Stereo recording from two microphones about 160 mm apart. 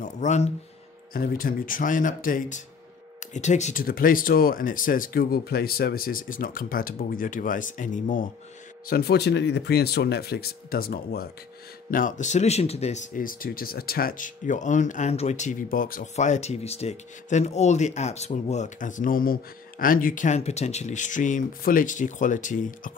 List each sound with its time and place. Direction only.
0.0 s speech: 50° left (ahead or behind)
1.1 s speech: 65° left (ahead or behind); by 3.8 s 45° left (ahead or behind)
3.8 s speech: 65° left (ahead or behind)
8.8 s speech: 75° left (ahead or behind)
11.9 s speech: 55° left (ahead or behind)